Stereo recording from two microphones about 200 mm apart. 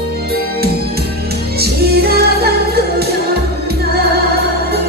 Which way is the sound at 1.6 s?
50° right (ahead or behind).